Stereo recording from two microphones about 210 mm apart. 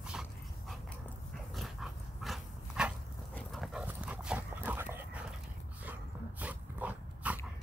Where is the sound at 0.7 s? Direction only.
Centre (ahead or behind).